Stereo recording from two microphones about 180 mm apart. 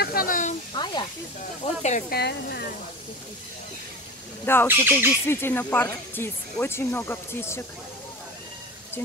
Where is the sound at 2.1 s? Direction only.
65° left (ahead or behind).